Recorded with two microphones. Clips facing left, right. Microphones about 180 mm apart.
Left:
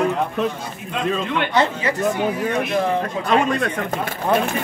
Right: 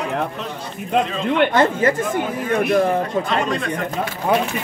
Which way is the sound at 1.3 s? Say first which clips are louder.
Right 7 dB; 50° right (ahead or behind).